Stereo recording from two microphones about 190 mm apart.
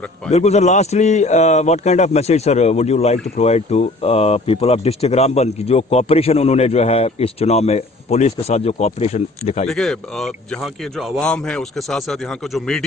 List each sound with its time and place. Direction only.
0.3 s a man's voice: 35° left (ahead or behind)
9.7 s a man's voice: centre (ahead or behind)